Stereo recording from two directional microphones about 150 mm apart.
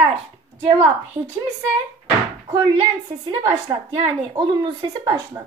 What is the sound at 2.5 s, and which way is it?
A woman's voice, 25° right (ahead or behind).